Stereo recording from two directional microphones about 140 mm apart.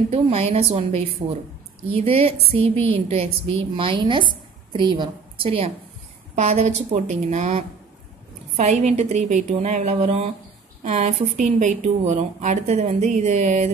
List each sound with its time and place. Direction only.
0.1 s a woman's voice: 45° right (ahead or behind)